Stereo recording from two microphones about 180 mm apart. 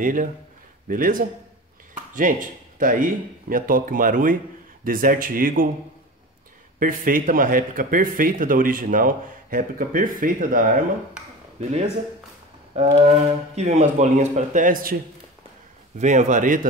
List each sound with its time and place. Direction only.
0.0 s speech: 45° right (ahead or behind)
6.8 s speech: 50° right (ahead or behind)
12.7 s a sound: 35° right (ahead or behind)
13.6 s speech: 40° right (ahead or behind)
16.0 s speech: 40° right (ahead or behind)